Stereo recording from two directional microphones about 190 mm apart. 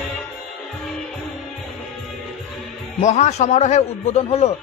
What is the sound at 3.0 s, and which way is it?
A man's voice, 40° left (ahead or behind).